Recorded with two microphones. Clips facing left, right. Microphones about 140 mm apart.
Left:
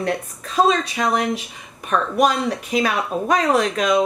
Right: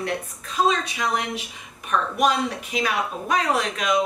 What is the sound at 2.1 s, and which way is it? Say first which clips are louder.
Speech: left 4 dB; 40° left (ahead or behind).